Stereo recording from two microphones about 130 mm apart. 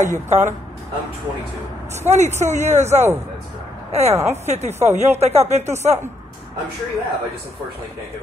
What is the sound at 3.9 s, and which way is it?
Speech, 55° right (ahead or behind).